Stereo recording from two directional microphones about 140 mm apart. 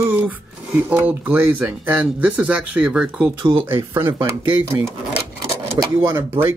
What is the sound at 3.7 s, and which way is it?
Speech, 20° right (ahead or behind).